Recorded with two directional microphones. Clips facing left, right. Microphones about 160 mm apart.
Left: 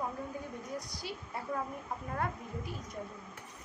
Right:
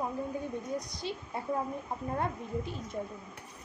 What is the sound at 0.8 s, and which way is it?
Speech, 20° right (ahead or behind).